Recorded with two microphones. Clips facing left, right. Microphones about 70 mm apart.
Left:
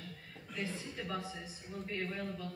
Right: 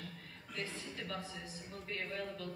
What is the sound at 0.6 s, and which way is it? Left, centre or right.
Speech, centre.